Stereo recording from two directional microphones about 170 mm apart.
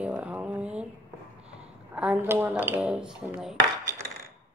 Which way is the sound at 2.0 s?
10° right (ahead or behind).